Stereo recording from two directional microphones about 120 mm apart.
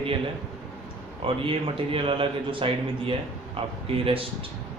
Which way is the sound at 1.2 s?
50° right (ahead or behind).